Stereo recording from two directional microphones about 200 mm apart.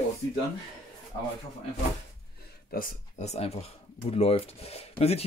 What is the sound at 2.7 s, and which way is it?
Speech, 45° left (ahead or behind).